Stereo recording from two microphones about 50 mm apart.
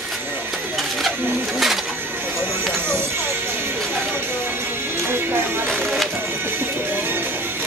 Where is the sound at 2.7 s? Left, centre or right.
Right.